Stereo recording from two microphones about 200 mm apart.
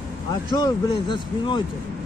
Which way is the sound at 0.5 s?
20° left (ahead or behind).